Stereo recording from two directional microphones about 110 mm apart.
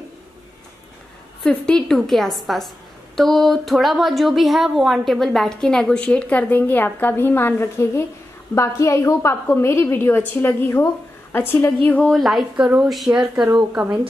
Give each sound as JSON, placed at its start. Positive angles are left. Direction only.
{"t": 1.4, "sound": "a woman's voice", "side_deg": 10}
{"t": 12.1, "sound": "a woman's voice", "side_deg": 0}